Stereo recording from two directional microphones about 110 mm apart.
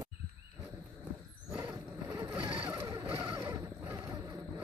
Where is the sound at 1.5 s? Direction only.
15° right (ahead or behind).